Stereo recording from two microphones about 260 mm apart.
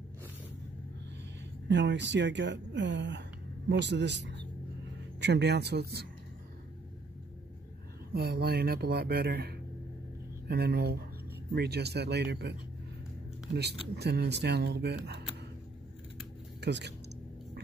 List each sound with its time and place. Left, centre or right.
1.7 s speech: right
8.1 s speech: right
16.6 s speech: right